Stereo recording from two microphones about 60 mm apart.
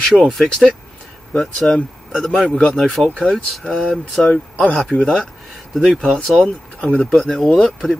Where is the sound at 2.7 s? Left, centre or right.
Centre.